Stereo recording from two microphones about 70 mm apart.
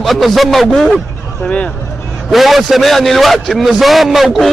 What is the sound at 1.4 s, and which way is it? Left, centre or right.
Speech, centre.